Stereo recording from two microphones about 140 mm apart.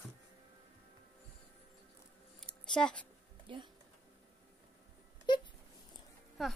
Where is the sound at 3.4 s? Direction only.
35° right (ahead or behind).